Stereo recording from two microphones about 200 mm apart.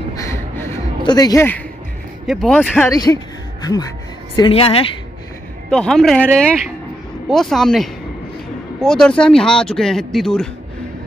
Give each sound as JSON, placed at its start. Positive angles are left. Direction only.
{"t": 0.2, "sound": "a sound", "side_deg": 15}
{"t": 2.2, "sound": "speech", "side_deg": 0}
{"t": 2.9, "sound": "a woman's voice", "side_deg": 20}
{"t": 4.4, "sound": "a woman's voice", "side_deg": 30}
{"t": 5.7, "sound": "speech", "side_deg": 5}